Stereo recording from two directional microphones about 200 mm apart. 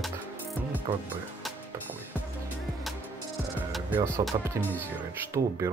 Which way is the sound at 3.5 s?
10° right (ahead or behind).